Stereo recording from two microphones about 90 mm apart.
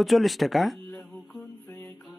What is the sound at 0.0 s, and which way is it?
Music, centre (ahead or behind).